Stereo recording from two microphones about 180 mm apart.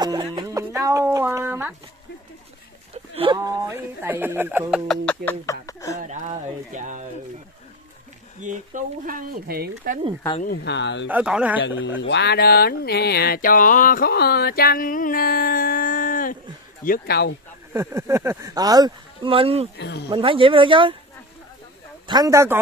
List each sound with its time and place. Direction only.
0.0 s speech: 20° right (ahead or behind)
3.2 s speech: 25° right (ahead or behind); by 5.9 s 20° left (ahead or behind)
6.0 s speech: 45° right (ahead or behind)
8.4 s speech: 45° right (ahead or behind)
10.4 s speech: 60° left (ahead or behind)
11.1 s speech: 5° right (ahead or behind)
11.8 s mantra: 90° left; by 17.4 s 60° left (ahead or behind)
17.7 s speech: 15° right (ahead or behind); by 19.7 s 35° right (ahead or behind)
19.8 s speech: 70° left (ahead or behind)
20.1 s speech: 30° right (ahead or behind)
22.0 s speech: 20° right (ahead or behind)